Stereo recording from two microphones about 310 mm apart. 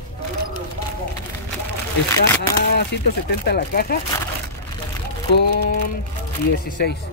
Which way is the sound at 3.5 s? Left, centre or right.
Left.